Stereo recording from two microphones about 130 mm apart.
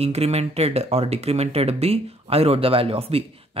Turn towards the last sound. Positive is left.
turn(degrees=-50)  # may be behind; listen again after turning